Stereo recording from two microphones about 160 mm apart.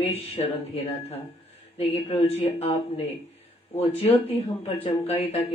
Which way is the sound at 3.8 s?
40° left (ahead or behind).